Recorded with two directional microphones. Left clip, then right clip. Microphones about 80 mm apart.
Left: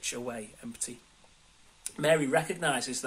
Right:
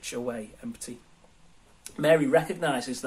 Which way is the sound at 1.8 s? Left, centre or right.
Centre.